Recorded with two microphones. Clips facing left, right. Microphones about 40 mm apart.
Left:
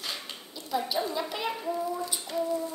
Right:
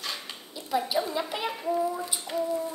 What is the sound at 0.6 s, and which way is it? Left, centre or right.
Speech, centre.